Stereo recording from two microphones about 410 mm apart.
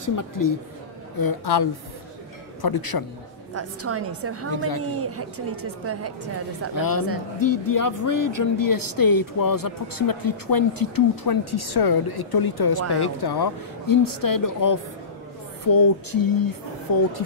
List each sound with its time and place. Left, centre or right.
0.0 s speech: left
1.2 s a woman's voice: left
3.5 s a woman's voice: right
6.7 s speech: left